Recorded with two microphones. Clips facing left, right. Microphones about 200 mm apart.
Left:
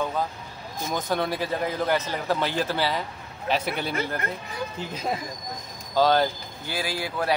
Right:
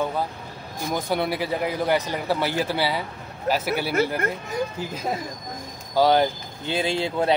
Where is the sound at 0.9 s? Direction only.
10° right (ahead or behind).